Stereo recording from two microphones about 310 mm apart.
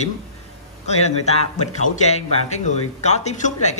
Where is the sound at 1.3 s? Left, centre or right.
Left.